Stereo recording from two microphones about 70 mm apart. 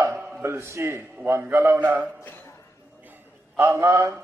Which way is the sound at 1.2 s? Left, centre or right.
Right.